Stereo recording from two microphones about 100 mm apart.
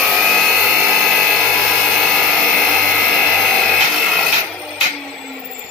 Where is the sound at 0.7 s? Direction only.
20° right (ahead or behind).